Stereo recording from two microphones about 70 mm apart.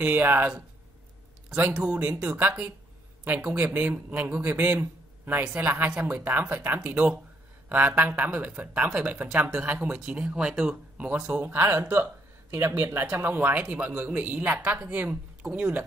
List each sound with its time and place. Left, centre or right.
0.0 s a man's voice: right
1.5 s a man's voice: centre
5.4 s a man's voice: centre
9.9 s speech: centre
11.4 s a man's voice: right